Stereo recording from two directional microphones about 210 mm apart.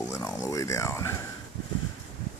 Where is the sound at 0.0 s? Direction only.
15° left (ahead or behind).